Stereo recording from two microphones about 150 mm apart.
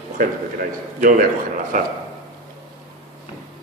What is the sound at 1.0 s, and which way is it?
Speech, 60° right (ahead or behind).